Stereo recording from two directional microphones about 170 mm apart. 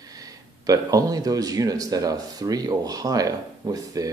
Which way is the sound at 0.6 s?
20° right (ahead or behind).